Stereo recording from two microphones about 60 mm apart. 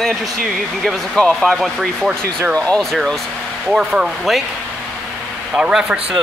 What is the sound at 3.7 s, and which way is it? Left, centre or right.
Speech, centre.